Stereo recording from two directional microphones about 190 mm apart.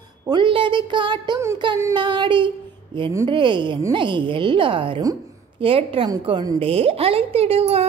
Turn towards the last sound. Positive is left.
turn(degrees=-30)  # may be behind; listen again after turning